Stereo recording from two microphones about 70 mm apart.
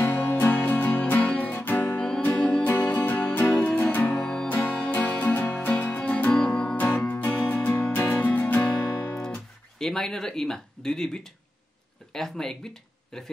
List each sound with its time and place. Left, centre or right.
0.0 s music: left
2.0 s music: centre
4.5 s music: left; by 6.8 s centre
7.1 s music: left
9.1 s guitar: centre
12.1 s speech: centre